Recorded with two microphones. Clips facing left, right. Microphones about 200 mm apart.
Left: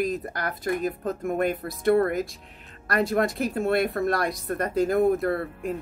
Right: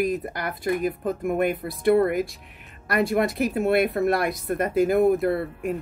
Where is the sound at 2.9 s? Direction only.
10° right (ahead or behind).